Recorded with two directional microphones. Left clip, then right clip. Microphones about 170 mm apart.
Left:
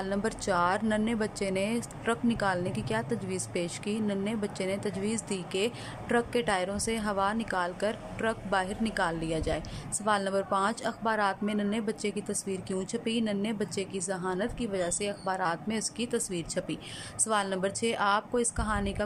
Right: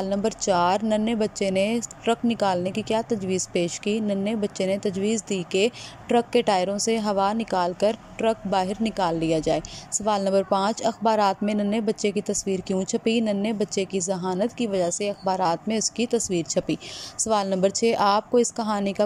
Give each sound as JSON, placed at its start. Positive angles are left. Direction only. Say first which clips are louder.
{"t": 0.0, "sound": "a woman's voice", "louder": "right 7 dB", "side_deg": -15}